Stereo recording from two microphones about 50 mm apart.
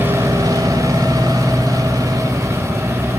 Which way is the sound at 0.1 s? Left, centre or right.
Right.